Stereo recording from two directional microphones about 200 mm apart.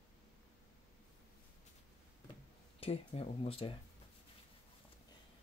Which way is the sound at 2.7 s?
30° left (ahead or behind).